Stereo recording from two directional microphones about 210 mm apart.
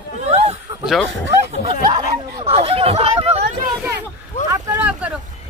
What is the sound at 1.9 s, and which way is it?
Chatter, 30° right (ahead or behind).